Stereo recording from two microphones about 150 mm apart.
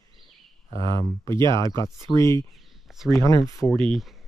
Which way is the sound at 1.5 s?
30° right (ahead or behind).